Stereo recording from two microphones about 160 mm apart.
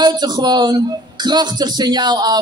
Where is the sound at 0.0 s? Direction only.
25° right (ahead or behind).